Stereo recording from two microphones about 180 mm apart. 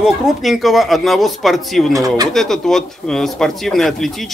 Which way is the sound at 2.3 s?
Centre (ahead or behind).